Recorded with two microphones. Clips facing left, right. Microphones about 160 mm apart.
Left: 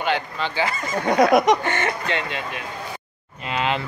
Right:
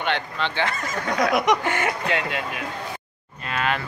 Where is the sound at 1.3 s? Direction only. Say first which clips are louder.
Left 2 dB; 35° left (ahead or behind).